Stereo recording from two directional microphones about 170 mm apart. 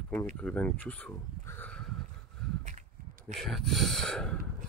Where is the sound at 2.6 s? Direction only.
45° right (ahead or behind).